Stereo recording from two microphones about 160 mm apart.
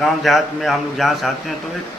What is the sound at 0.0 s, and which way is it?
A man's voice, centre (ahead or behind).